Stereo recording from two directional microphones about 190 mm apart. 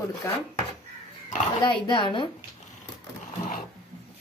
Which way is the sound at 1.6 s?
25° left (ahead or behind).